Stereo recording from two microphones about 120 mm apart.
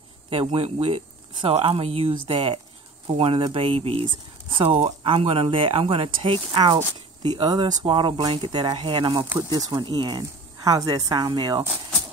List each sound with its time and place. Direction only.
0.3 s speech: 50° right (ahead or behind)